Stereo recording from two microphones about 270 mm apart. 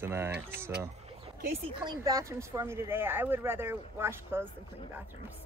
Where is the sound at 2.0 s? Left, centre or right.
Centre.